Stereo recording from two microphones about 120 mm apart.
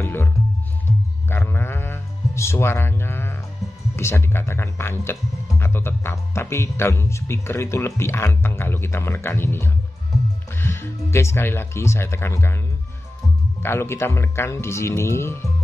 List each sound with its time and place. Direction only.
0.0 s music: 20° left (ahead or behind)
1.3 s bleat: 20° left (ahead or behind)
3.9 s speech: 20° left (ahead or behind)
13.6 s speech: 20° left (ahead or behind)